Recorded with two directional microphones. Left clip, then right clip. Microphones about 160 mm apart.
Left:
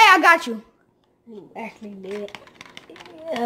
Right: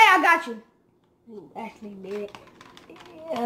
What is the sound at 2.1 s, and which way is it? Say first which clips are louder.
Dishes: left 2 dB; 20° left (ahead or behind).